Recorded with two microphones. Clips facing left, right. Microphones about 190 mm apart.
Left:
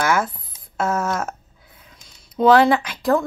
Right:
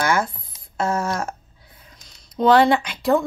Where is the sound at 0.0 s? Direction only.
Centre (ahead or behind).